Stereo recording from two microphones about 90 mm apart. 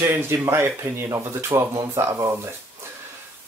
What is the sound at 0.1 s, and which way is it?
Speech, 25° right (ahead or behind).